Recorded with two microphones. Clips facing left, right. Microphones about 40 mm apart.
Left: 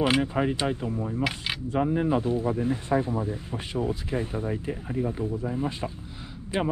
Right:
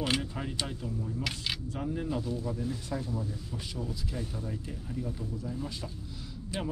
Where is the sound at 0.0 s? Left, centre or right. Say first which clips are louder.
Left 9 dB; left.